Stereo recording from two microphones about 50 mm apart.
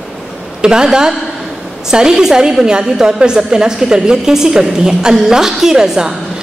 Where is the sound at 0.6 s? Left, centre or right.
Centre.